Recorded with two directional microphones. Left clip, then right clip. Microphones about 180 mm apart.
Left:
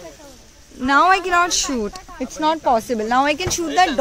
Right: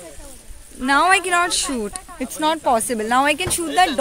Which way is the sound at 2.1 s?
60° right (ahead or behind).